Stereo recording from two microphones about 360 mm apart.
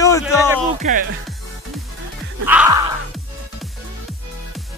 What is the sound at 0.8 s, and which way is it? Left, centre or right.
Speech, centre.